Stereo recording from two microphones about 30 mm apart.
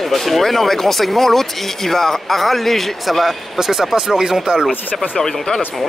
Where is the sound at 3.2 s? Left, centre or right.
Centre.